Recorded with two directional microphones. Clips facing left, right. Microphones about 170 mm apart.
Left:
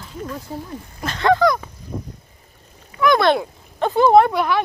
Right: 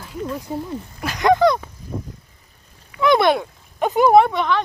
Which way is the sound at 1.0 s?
15° right (ahead or behind).